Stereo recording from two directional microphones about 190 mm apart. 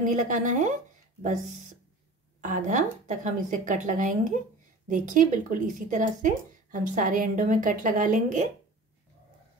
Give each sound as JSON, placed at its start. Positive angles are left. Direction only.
{"t": 0.0, "sound": "a woman's voice", "side_deg": -40}